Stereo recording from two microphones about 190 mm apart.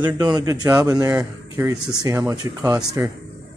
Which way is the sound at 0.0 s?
20° right (ahead or behind).